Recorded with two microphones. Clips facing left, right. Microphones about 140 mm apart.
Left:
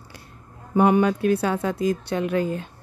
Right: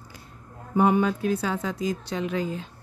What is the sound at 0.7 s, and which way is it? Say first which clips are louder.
Speech: left 3 dB; 70° left (ahead or behind).